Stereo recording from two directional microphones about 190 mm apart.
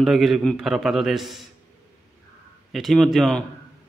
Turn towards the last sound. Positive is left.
turn(degrees=0)  # may be behind; listen again after turning